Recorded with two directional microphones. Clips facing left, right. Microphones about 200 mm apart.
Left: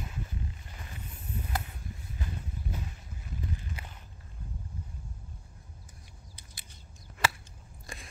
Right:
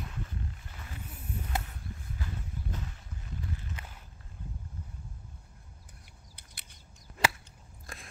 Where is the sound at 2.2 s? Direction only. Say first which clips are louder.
Left 2 dB; 20° left (ahead or behind).